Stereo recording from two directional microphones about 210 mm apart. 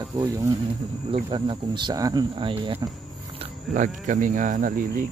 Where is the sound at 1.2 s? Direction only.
25° right (ahead or behind).